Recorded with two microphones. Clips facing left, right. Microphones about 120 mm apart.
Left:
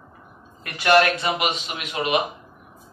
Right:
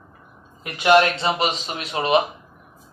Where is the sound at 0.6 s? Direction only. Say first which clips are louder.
Right 2 dB; 20° right (ahead or behind).